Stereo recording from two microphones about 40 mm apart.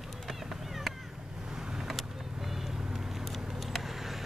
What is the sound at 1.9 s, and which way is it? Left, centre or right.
Vehicle, centre.